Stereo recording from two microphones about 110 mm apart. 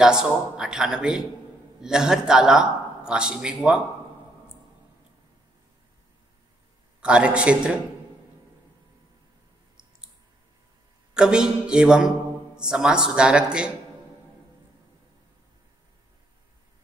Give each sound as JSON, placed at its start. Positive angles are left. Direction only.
{"t": 0.0, "sound": "a man's voice", "side_deg": -5}
{"t": 7.0, "sound": "a man's voice", "side_deg": -10}
{"t": 11.1, "sound": "a man's voice", "side_deg": -5}